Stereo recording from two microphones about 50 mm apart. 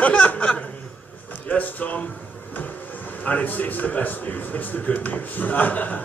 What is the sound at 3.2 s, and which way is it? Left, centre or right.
A man's voice, left.